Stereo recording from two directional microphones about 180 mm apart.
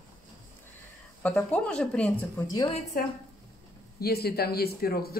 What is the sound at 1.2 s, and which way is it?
Speech, 5° left (ahead or behind).